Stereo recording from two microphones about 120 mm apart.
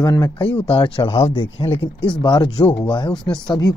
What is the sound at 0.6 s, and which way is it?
Speech, 45° left (ahead or behind).